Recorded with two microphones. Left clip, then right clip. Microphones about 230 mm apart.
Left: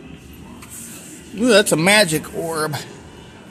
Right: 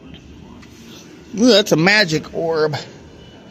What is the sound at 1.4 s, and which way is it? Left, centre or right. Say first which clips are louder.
Speech: right 1 dB; right.